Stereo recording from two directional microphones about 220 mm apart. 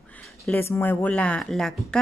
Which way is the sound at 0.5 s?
10° left (ahead or behind).